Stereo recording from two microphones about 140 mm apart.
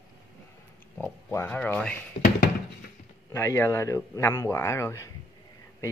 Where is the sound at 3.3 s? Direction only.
20° left (ahead or behind).